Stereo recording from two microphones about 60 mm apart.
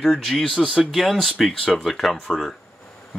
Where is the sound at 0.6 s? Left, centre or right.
Centre.